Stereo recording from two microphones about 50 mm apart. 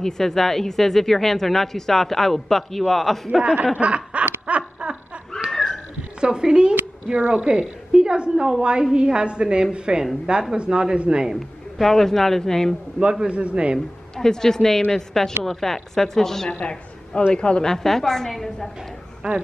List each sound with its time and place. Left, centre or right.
0.0 s a woman's voice: centre
3.7 s snicker: right
4.5 s a sound: right
5.5 s a sound: centre
6.2 s a woman's voice: centre
11.3 s a woman's voice: centre
13.0 s a woman's voice: centre
13.7 s a woman's voice: centre
16.4 s a woman's voice: centre
19.2 s a woman's voice: centre